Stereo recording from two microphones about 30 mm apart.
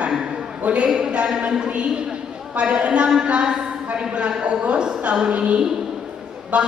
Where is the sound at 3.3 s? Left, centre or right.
Right.